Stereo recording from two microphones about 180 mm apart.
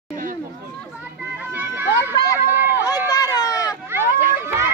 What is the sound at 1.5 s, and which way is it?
Children playing, 10° right (ahead or behind).